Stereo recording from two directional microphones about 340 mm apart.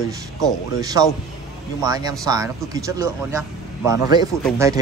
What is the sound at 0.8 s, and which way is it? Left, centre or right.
A man's voice, centre.